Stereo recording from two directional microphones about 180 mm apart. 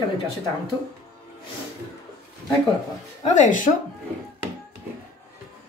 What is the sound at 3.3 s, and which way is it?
Speech, 45° left (ahead or behind).